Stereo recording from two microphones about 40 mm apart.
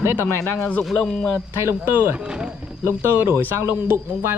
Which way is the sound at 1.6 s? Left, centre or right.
Right.